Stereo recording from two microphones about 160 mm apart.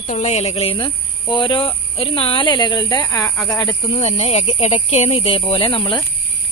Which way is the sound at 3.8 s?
35° left (ahead or behind).